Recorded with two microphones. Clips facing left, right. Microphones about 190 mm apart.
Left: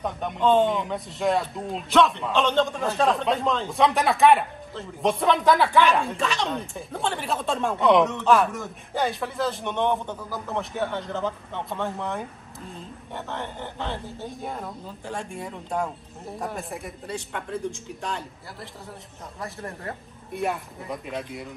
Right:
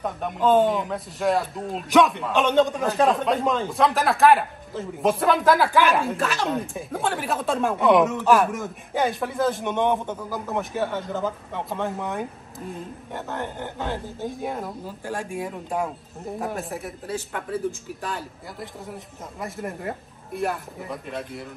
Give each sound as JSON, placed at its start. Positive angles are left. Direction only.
{"t": 0.0, "sound": "speech", "side_deg": 0}
{"t": 9.8, "sound": "a man's voice", "side_deg": -15}
{"t": 10.5, "sound": "speech", "side_deg": 0}
{"t": 19.9, "sound": "speech", "side_deg": 0}